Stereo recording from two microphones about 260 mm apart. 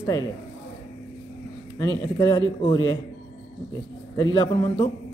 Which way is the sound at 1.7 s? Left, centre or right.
Centre.